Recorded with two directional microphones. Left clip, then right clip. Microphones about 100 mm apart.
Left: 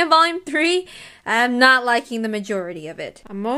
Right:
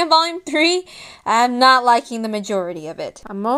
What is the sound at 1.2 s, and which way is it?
A woman's voice, 15° right (ahead or behind).